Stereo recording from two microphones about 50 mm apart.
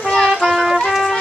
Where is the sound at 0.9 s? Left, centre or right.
Centre.